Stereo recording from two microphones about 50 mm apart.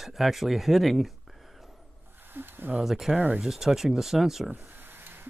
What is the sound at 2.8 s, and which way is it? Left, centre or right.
Speech, centre.